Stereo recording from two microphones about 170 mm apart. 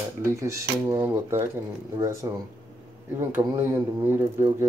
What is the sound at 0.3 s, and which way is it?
Speech, 15° right (ahead or behind).